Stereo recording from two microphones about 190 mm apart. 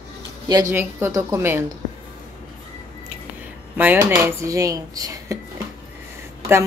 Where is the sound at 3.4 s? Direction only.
10° right (ahead or behind).